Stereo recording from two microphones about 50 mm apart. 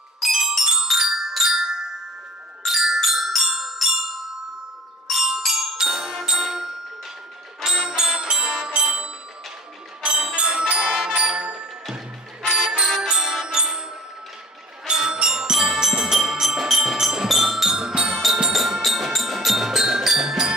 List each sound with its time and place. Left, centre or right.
0.2 s glockenspiel: centre
2.6 s music: centre; by 11.6 s right
12.4 s bicycle bell: centre
13.1 s music: centre
14.9 s music: centre